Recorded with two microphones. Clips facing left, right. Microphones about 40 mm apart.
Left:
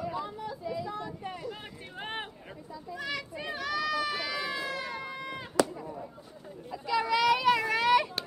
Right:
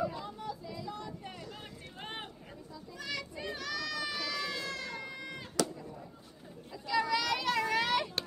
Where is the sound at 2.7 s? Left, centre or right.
Centre.